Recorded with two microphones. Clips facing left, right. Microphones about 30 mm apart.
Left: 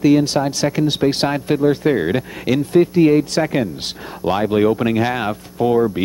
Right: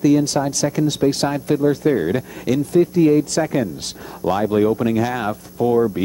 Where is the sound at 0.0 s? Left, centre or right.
Left.